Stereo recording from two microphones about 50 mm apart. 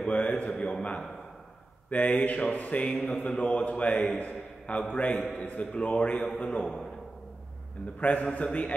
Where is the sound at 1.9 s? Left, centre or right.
Left.